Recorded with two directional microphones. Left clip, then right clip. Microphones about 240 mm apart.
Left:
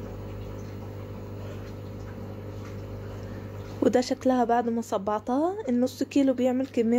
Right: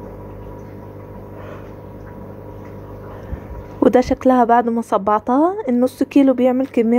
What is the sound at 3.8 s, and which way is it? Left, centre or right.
A woman's voice, centre.